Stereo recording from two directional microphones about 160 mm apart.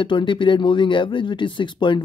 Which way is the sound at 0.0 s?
30° left (ahead or behind).